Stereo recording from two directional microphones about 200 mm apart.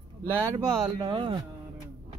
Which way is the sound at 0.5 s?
20° right (ahead or behind).